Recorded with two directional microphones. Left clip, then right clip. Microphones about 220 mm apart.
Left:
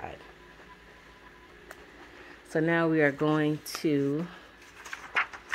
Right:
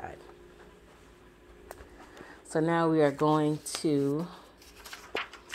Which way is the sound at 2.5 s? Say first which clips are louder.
Left 1 dB; 15° left (ahead or behind).